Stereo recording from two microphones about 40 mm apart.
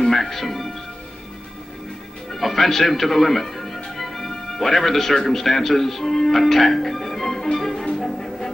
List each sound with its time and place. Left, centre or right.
0.0 s speech: centre
2.3 s a man's voice: centre
7.5 s music: centre